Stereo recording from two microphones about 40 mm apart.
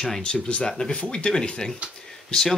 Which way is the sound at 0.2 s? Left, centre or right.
Left.